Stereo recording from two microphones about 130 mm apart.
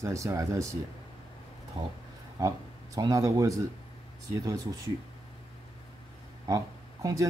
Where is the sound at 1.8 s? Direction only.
40° right (ahead or behind).